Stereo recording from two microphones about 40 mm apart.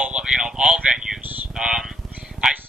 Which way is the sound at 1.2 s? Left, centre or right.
Right.